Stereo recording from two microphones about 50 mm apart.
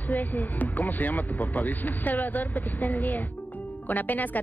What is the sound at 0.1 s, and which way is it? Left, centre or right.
Speech, left.